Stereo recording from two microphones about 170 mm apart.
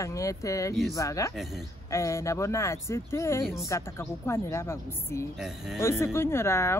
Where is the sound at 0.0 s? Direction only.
20° left (ahead or behind).